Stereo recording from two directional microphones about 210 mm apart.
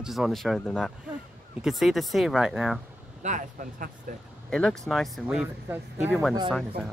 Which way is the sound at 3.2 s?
35° right (ahead or behind).